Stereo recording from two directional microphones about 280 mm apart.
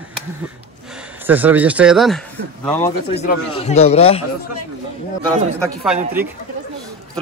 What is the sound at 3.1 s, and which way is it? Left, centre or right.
A man's voice, left.